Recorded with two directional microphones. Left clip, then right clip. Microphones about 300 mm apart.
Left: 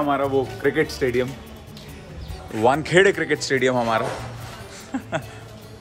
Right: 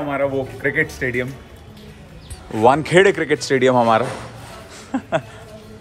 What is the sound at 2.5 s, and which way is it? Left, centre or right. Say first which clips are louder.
Speech: right 4 dB; centre.